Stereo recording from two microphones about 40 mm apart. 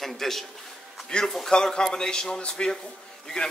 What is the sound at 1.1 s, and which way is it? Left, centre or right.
A man's voice, centre.